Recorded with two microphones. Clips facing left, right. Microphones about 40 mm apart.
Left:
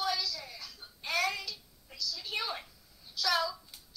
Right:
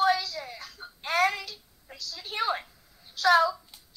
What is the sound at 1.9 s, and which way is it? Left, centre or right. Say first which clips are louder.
Speech: right 3 dB; right.